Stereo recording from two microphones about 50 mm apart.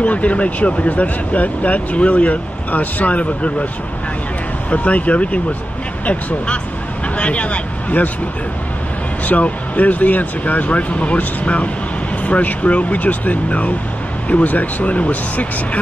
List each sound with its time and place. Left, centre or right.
0.0 s speech: left
4.6 s speech: left
9.2 s speech: left